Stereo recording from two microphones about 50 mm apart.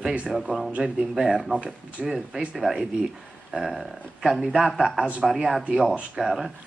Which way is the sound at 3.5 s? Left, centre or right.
Centre.